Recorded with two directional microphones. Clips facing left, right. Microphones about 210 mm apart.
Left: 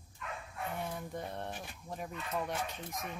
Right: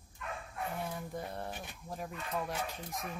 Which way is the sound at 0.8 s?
Centre (ahead or behind).